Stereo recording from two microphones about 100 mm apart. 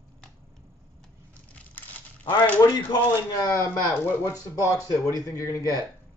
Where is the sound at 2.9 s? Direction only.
35° left (ahead or behind).